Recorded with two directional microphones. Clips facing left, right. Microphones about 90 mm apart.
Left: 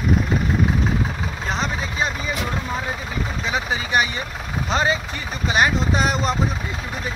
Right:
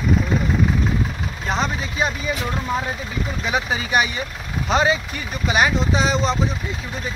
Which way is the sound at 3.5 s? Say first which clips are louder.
Right 1 dB; 20° right (ahead or behind).